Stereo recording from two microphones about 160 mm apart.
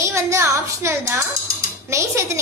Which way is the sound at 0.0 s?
20° right (ahead or behind).